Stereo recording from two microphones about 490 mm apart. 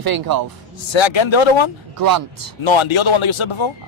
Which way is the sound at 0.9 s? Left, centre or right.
Left.